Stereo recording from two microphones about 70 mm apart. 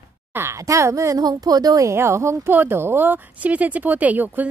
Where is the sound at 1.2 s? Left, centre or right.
Right.